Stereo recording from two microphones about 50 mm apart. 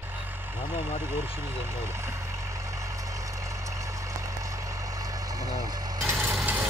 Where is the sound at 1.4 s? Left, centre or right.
Right.